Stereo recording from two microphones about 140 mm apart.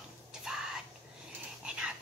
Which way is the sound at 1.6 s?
10° right (ahead or behind).